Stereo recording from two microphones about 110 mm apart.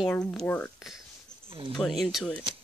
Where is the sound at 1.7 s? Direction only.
Centre (ahead or behind).